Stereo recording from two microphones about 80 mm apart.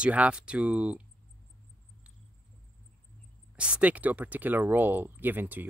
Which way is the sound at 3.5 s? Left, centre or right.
Centre.